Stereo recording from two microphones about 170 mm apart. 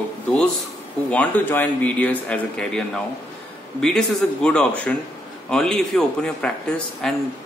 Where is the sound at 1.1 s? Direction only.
10° left (ahead or behind).